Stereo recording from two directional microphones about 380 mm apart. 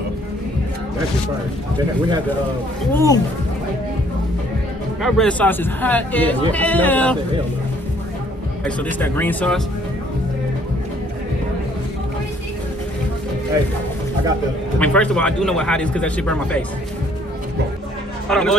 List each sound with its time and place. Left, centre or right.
2.9 s speech: centre
5.0 s speech: centre
9.0 s speech: centre
14.8 s speech: centre
18.3 s speech: centre